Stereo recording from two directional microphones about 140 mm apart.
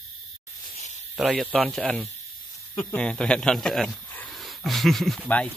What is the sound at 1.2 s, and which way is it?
Speech, 5° right (ahead or behind).